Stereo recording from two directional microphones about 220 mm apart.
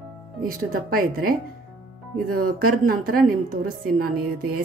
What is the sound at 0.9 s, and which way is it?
A woman's voice, 40° right (ahead or behind).